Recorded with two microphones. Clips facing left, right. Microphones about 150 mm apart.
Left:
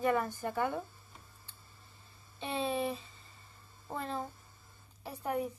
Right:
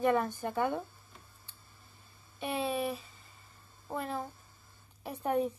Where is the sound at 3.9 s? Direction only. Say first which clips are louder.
Right 2 dB; 10° right (ahead or behind).